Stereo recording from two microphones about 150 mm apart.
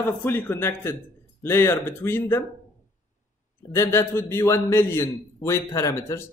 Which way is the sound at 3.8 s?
15° left (ahead or behind).